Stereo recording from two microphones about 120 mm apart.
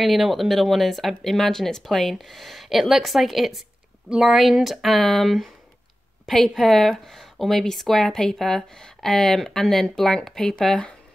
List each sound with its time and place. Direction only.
0.0 s speech: centre (ahead or behind)